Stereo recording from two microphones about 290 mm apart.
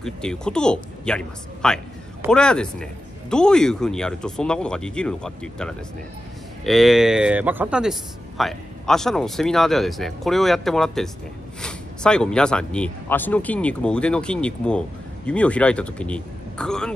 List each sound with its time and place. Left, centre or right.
0.0 s a man's voice: centre